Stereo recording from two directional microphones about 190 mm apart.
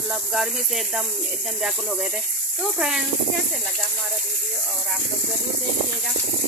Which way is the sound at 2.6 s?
Centre (ahead or behind).